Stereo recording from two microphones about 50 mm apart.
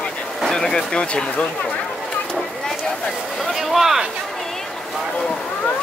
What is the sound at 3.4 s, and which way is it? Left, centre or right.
Speech, centre.